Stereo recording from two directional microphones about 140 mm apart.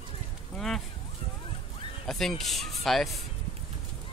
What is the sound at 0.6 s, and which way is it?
Speech, centre (ahead or behind).